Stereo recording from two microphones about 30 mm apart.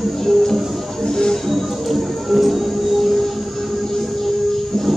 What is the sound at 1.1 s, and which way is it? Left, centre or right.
Music, left.